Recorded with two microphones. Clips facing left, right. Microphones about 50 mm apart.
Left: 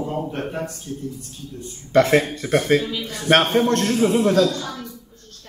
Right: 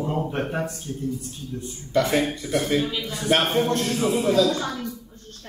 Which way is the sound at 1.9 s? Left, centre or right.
Left.